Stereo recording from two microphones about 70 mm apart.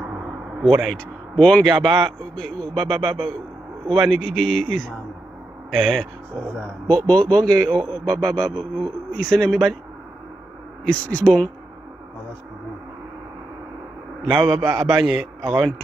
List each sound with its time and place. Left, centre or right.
0.1 s a sound: centre
0.7 s a man's voice: centre
0.9 s a man's voice: centre
6.6 s a man's voice: centre
10.9 s speech: left
14.2 s a man's voice: centre